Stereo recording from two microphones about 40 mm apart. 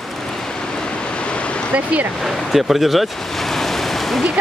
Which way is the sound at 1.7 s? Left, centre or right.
Right.